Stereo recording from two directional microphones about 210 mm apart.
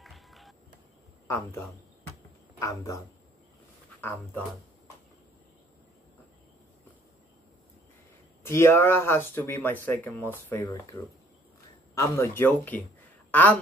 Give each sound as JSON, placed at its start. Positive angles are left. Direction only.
{"t": 0.0, "sound": "music", "side_deg": 0}
{"t": 1.2, "sound": "speech", "side_deg": 15}
{"t": 2.6, "sound": "speech", "side_deg": 15}
{"t": 4.0, "sound": "speech", "side_deg": 10}
{"t": 8.5, "sound": "a woman's voice", "side_deg": 10}